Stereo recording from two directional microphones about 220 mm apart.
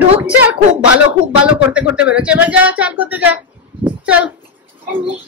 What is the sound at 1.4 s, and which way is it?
Speech, 5° right (ahead or behind).